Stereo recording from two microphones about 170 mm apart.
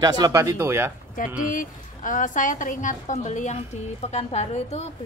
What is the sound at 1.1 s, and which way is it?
A woman's voice, 50° left (ahead or behind).